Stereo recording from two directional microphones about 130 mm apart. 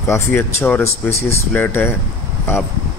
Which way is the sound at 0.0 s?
20° left (ahead or behind).